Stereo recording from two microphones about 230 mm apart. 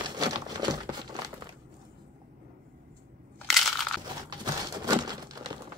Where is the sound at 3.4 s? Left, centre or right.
Centre.